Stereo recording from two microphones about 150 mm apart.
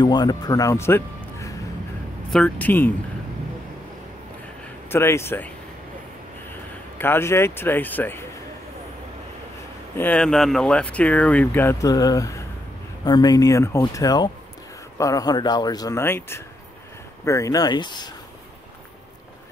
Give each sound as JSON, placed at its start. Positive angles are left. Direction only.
{"t": 0.0, "sound": "a man's voice", "side_deg": 30}
{"t": 4.8, "sound": "speech", "side_deg": 15}
{"t": 7.0, "sound": "speech", "side_deg": 15}
{"t": 9.9, "sound": "speech", "side_deg": 10}